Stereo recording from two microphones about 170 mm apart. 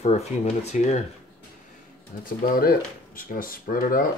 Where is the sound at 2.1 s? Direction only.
60° left (ahead or behind).